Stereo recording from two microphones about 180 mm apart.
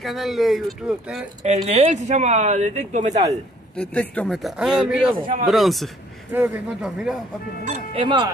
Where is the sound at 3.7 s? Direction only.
5° left (ahead or behind).